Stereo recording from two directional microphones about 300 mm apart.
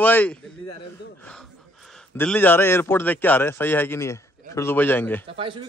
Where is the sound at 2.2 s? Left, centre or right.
Centre.